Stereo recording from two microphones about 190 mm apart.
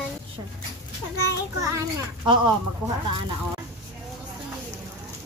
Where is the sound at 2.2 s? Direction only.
25° right (ahead or behind).